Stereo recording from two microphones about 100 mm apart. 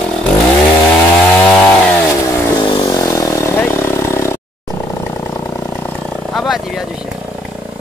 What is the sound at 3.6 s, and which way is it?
Vehicle, 25° left (ahead or behind).